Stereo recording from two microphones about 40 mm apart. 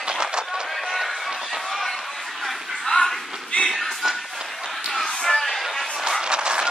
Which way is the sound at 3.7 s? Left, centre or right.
Centre.